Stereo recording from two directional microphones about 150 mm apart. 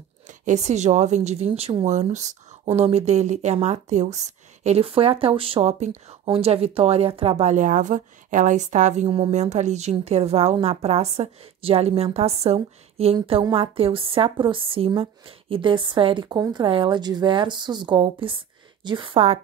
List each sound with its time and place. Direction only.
0.3 s speech: 50° right (ahead or behind)
1.9 s a woman's voice: 50° right (ahead or behind)